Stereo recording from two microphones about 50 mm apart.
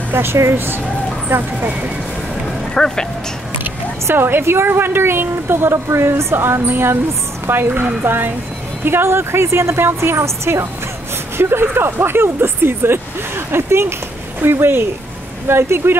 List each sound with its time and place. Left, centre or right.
0.1 s a woman's voice: right
1.3 s speech: right
2.7 s speech: centre
3.6 s speech: right
5.9 s a woman's voice: right
6.6 s a woman's voice: right
11.3 s a woman's voice: right